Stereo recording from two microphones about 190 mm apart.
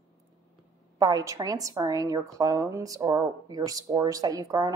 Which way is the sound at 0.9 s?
20° right (ahead or behind).